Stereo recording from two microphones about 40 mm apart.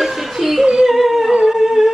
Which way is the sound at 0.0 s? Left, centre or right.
Centre.